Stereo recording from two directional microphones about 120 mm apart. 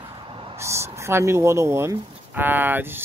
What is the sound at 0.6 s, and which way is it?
Speech, 25° right (ahead or behind).